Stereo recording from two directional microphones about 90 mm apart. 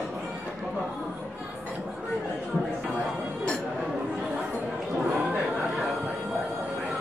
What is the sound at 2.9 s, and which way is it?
Music, 10° right (ahead or behind).